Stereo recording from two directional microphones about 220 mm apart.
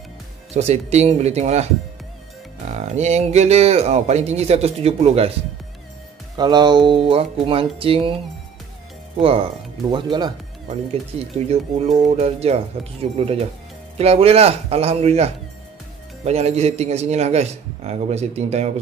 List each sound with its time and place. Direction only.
0.5 s speech: 30° right (ahead or behind)
2.7 s speech: 30° right (ahead or behind)
6.3 s speech: 20° right (ahead or behind)
9.2 s speech: 25° right (ahead or behind)
13.9 s speech: 25° right (ahead or behind)